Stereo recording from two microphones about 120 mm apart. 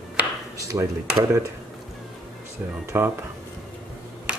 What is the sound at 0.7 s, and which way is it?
Speech, 30° right (ahead or behind).